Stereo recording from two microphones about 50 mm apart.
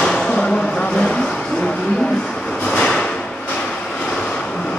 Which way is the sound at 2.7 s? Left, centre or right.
Centre.